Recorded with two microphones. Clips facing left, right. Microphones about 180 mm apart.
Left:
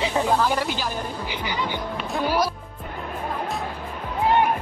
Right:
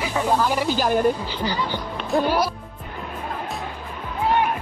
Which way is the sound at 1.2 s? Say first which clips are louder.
Right 2 dB; 15° left (ahead or behind).